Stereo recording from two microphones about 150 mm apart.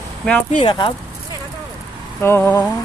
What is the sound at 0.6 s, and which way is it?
Speech, 30° left (ahead or behind).